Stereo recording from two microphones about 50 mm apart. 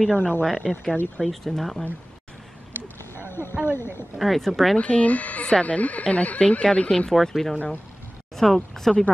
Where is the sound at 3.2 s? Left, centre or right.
Left.